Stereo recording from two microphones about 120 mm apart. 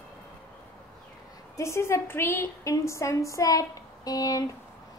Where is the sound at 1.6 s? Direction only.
20° left (ahead or behind).